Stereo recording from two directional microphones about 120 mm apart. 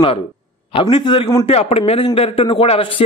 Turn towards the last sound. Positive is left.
turn(degrees=50)  # may be behind; listen again after turning